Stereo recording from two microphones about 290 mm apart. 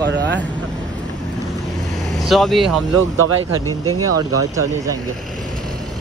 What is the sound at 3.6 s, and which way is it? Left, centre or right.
Speech, centre.